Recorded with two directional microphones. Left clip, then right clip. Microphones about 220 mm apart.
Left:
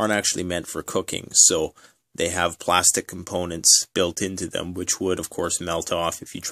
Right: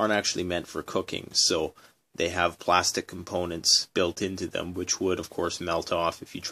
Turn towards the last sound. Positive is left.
turn(degrees=35)  # may be behind; listen again after turning